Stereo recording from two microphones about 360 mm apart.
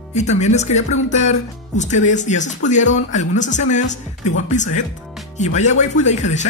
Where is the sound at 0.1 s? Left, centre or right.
Centre.